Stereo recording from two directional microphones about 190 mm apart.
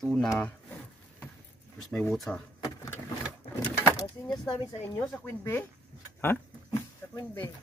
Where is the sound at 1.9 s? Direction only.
5° left (ahead or behind).